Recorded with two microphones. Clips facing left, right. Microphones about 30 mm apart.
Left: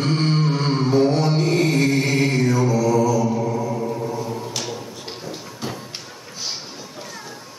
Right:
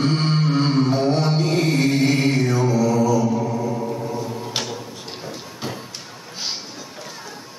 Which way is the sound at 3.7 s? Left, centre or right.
Centre.